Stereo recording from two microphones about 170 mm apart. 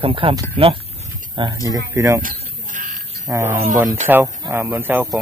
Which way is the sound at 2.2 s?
50° right (ahead or behind).